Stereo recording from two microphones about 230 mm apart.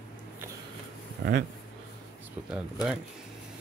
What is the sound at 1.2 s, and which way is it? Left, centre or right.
Speech, right.